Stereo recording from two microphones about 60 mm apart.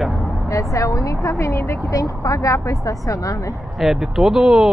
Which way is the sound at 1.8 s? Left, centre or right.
Left.